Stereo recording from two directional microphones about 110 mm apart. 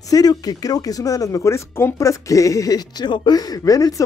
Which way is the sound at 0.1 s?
35° left (ahead or behind).